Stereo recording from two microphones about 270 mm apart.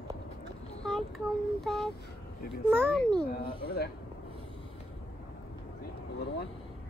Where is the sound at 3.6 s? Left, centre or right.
Left.